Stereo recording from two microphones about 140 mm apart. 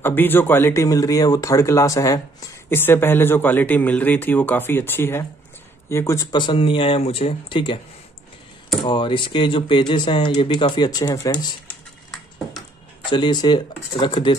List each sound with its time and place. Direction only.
0.0 s speech: 15° left (ahead or behind)
6.3 s speech: 35° left (ahead or behind)
8.8 s speech: 35° left (ahead or behind)
11.3 s typing: 5° left (ahead or behind)
13.1 s speech: 35° left (ahead or behind)